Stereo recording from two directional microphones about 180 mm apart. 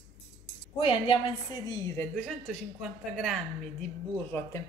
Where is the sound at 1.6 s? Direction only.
15° left (ahead or behind).